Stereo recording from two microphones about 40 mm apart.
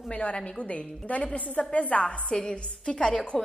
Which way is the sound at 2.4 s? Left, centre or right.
Centre.